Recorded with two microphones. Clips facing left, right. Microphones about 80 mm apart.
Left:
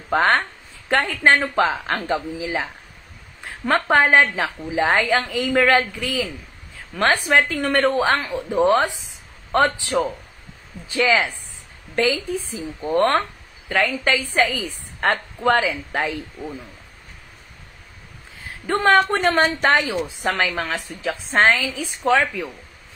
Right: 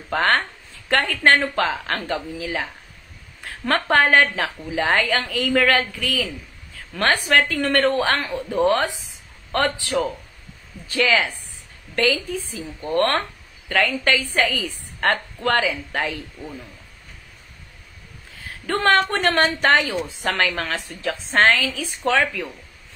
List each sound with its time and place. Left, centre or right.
0.1 s a woman's voice: centre
7.2 s a woman's voice: centre
18.7 s speech: centre
19.1 s speech: centre
19.7 s a woman's voice: left